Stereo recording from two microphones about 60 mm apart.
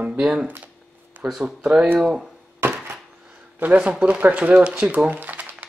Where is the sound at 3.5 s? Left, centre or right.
Right.